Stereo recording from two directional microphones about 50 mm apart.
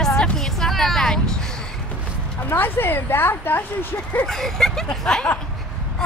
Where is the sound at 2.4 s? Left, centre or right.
Left.